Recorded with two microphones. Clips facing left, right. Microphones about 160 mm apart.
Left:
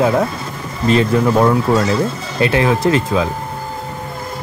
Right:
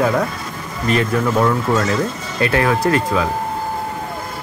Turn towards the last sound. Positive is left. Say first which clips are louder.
# left 2 dB
turn(degrees=25)  # may be behind; listen again after turning